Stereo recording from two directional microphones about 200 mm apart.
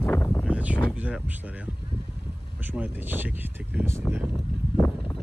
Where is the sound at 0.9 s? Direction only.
5° right (ahead or behind).